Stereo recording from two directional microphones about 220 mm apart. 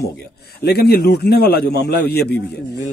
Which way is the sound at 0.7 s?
45° left (ahead or behind).